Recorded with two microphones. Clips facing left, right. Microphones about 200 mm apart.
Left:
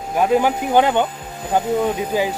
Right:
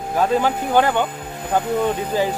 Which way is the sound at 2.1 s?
10° left (ahead or behind).